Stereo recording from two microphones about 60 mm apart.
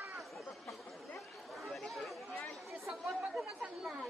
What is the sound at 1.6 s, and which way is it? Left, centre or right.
Chatter, centre.